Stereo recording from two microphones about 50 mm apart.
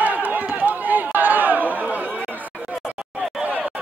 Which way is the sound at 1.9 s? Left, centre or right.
Right.